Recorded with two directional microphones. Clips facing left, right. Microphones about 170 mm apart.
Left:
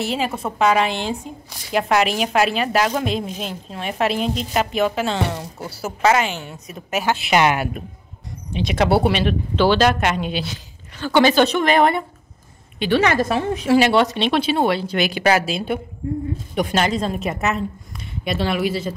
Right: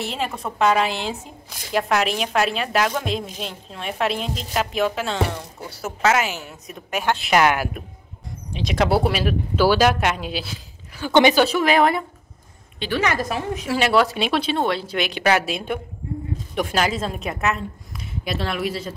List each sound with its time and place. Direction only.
0.0 s a woman's voice: centre (ahead or behind)
11.1 s a woman's voice: 20° right (ahead or behind)
11.3 s a woman's voice: 5° right (ahead or behind)
12.9 s a woman's voice: 25° left (ahead or behind)
13.7 s a woman's voice: centre (ahead or behind)